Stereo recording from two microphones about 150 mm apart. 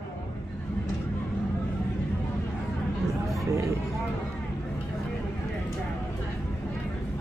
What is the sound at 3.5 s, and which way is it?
Speech, 20° right (ahead or behind).